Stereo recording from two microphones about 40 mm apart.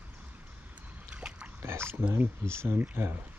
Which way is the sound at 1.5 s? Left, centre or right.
Right.